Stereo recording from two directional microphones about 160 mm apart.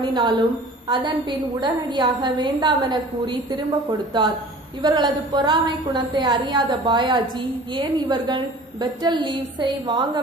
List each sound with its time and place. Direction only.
0.0 s a woman's voice: 30° right (ahead or behind)
4.8 s a woman's voice: 25° right (ahead or behind)